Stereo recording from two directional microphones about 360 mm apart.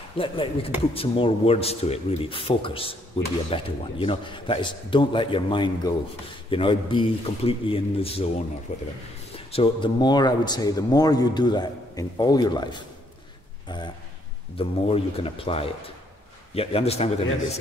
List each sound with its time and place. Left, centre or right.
0.2 s a man's voice: centre